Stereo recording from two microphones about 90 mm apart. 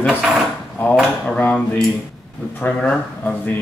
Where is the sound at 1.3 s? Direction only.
15° left (ahead or behind).